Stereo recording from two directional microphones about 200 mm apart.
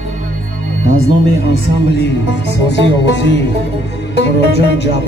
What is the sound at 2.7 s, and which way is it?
Speech, 60° left (ahead or behind).